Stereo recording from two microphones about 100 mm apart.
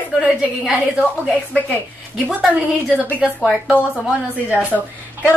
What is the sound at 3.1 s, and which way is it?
Speech, 10° right (ahead or behind).